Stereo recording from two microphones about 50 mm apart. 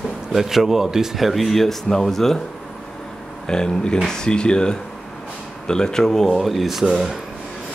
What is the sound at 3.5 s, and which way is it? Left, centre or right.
Speech, centre.